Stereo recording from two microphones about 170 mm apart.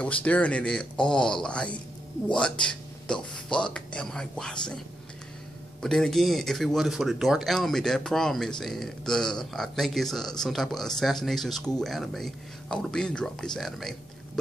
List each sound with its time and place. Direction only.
0.0 s speech: 10° left (ahead or behind)
5.8 s speech: 5° left (ahead or behind)